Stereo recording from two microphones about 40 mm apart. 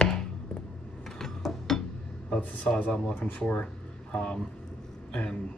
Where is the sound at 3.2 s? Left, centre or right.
Left.